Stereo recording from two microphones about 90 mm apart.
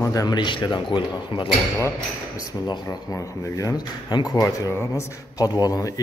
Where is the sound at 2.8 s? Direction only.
40° left (ahead or behind).